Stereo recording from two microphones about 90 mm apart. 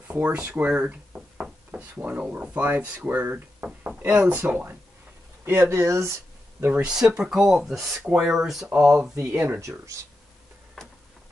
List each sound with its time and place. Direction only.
0.1 s speech: 15° right (ahead or behind); by 6.1 s 35° right (ahead or behind)
6.7 s speech: 10° right (ahead or behind)
9.1 s speech: 30° right (ahead or behind)
9.6 s speech: 35° right (ahead or behind)